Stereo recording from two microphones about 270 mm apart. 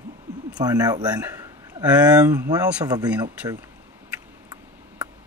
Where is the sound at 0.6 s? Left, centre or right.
Centre.